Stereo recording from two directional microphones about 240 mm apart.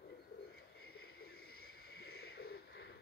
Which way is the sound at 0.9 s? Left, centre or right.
Left.